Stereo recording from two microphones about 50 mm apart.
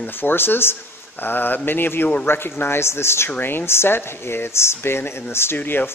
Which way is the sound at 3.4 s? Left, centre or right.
Left.